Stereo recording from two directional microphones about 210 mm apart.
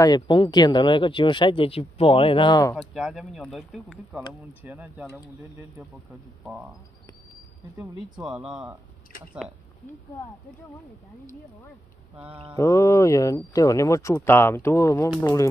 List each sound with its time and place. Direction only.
0.0 s speech: 20° left (ahead or behind)
2.7 s speech: centre (ahead or behind)
8.2 s speech: centre (ahead or behind)
12.3 s mantra: 25° right (ahead or behind)
12.5 s speech: 15° left (ahead or behind)